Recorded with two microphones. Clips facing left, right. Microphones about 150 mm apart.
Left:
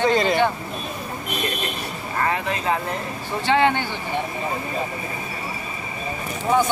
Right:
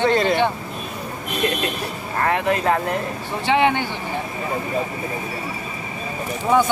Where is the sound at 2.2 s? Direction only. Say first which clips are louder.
Right 5 dB; 55° right (ahead or behind).